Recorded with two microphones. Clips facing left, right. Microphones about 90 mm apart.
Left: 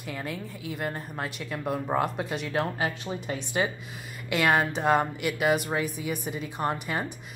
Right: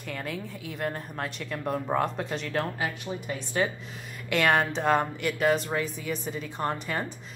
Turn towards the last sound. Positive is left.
turn(degrees=10)  # may be behind; listen again after turning